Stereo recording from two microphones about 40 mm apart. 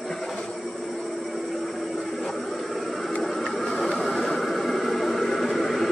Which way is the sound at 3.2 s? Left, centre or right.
Centre.